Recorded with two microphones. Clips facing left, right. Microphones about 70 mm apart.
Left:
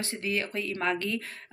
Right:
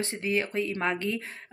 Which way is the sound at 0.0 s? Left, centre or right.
Right.